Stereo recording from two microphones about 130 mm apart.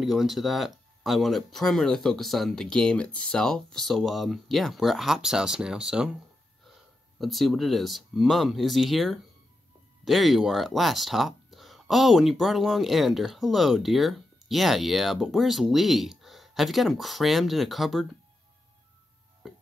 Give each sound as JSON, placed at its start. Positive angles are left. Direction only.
{"t": 0.0, "sound": "speech", "side_deg": 0}
{"t": 7.2, "sound": "speech", "side_deg": 0}
{"t": 19.4, "sound": "music", "side_deg": 0}